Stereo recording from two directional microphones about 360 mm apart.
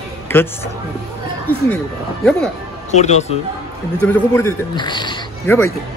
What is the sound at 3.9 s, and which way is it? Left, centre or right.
A man's voice, centre.